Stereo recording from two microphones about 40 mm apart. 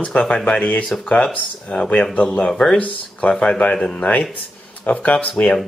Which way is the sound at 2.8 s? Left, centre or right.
Left.